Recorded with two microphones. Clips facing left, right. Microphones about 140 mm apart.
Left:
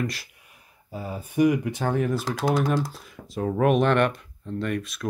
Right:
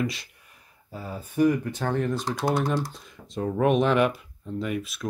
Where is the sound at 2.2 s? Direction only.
90° left.